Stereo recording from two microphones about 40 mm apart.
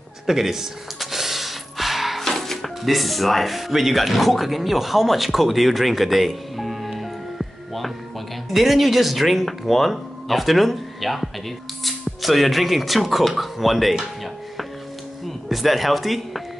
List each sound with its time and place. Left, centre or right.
0.3 s speech: centre
0.9 s gasp: centre
2.2 s speech: centre
15.2 s speech: centre